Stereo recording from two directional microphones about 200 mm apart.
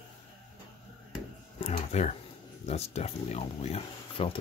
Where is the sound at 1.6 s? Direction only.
35° left (ahead or behind).